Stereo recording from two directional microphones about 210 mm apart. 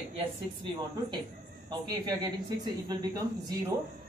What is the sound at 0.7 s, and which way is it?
Speech, 20° right (ahead or behind).